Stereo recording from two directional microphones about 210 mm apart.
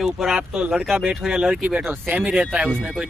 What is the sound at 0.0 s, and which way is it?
Speech, centre (ahead or behind).